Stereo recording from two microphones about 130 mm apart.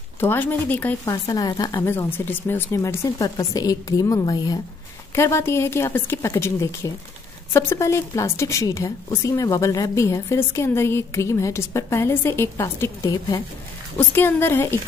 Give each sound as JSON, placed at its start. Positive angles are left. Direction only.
{"t": 0.2, "sound": "a woman's voice", "side_deg": 15}
{"t": 1.0, "sound": "a woman's voice", "side_deg": 30}
{"t": 1.8, "sound": "a woman's voice", "side_deg": 15}